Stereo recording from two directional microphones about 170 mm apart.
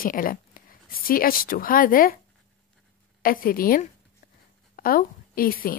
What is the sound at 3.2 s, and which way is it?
A woman's voice, 60° left (ahead or behind).